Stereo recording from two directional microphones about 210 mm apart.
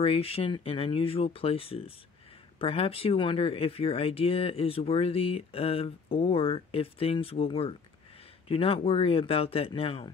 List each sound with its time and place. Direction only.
0.0 s speech: 30° left (ahead or behind)